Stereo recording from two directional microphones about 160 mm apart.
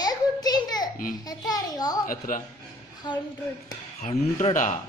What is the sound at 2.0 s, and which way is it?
Speech, 60° left (ahead or behind).